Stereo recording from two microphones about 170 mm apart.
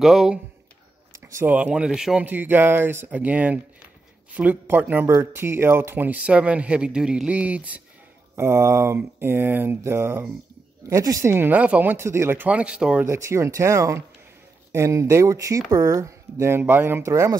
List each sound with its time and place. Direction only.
0.0 s speech: 5° right (ahead or behind)
13.0 s speech: 15° right (ahead or behind)